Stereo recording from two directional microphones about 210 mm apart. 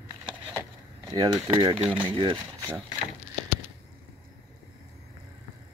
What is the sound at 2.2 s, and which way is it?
Speech, 20° right (ahead or behind).